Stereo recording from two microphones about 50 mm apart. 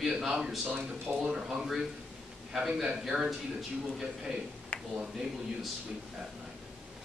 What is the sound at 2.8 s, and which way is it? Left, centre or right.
Speech, centre.